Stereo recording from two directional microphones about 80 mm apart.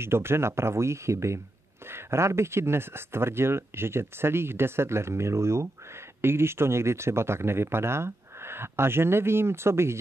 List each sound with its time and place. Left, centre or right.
0.0 s speech: right